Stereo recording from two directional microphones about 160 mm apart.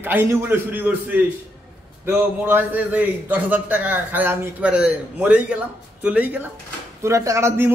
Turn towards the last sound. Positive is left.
turn(degrees=-15)  # may be behind; listen again after turning